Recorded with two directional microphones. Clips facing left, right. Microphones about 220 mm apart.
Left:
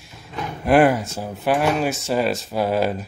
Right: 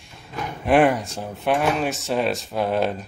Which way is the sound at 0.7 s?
Centre (ahead or behind).